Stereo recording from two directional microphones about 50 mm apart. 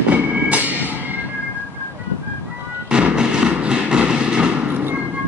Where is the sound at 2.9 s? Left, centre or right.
Centre.